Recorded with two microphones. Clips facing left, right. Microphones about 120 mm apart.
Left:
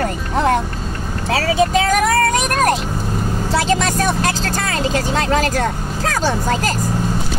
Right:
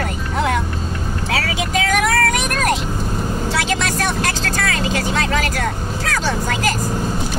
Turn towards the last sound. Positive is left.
turn(degrees=40)  # may be behind; listen again after turning